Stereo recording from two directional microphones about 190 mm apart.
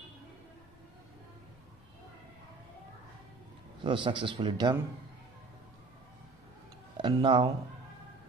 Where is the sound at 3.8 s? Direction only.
25° right (ahead or behind).